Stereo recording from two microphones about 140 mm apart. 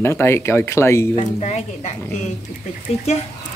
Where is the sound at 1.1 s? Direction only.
55° left (ahead or behind).